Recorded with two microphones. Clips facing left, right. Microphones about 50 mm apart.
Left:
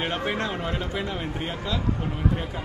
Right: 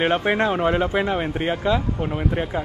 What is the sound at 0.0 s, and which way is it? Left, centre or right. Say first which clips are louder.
Speech: right 8 dB; right.